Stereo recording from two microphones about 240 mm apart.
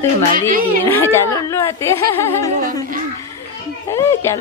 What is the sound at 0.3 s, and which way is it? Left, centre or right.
Speech, right.